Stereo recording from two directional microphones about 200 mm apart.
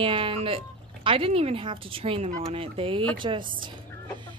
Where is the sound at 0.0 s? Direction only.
25° right (ahead or behind).